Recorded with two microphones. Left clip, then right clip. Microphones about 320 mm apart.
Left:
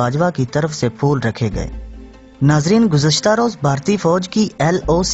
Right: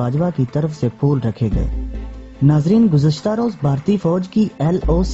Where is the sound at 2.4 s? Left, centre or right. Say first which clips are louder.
Left 1 dB; left.